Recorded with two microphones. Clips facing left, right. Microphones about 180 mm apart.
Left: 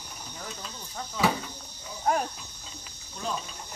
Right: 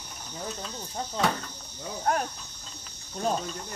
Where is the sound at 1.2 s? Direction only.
5° left (ahead or behind).